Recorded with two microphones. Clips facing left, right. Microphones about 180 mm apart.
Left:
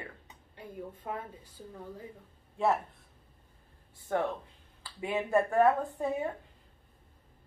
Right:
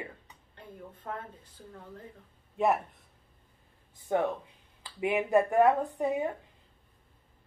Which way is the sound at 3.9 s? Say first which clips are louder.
Right 3 dB; 15° right (ahead or behind).